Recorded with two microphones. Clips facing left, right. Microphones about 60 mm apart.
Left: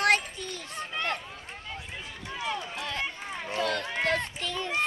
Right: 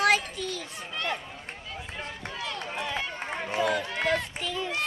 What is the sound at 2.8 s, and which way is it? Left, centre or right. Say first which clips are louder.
Run: right 2 dB; centre.